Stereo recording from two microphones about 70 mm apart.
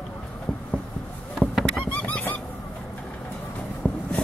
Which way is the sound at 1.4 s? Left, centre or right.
Centre.